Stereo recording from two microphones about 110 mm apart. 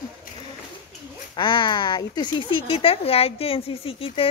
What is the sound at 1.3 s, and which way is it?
Speech, 45° left (ahead or behind).